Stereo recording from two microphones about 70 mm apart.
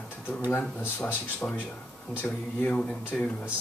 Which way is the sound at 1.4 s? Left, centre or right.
Left.